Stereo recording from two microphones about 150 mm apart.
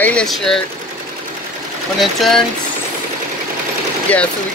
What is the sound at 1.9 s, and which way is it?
Speech, centre (ahead or behind).